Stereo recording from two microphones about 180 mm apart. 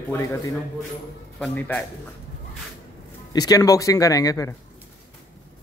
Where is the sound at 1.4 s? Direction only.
10° left (ahead or behind).